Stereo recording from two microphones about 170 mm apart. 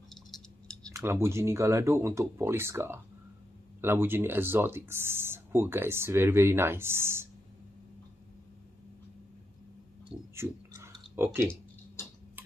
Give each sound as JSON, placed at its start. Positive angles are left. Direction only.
{"t": 0.8, "sound": "speech", "side_deg": -15}
{"t": 10.1, "sound": "a sound", "side_deg": -5}
{"t": 11.2, "sound": "speech", "side_deg": -15}
{"t": 12.0, "sound": "tick-tock", "side_deg": 15}